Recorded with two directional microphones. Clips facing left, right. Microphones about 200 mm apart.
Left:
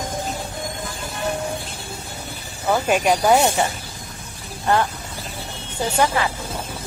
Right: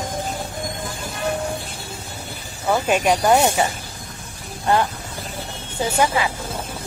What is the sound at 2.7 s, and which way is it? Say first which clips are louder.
Speech: even; centre (ahead or behind).